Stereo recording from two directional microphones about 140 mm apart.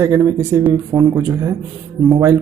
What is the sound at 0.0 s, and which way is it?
Speech, 20° right (ahead or behind).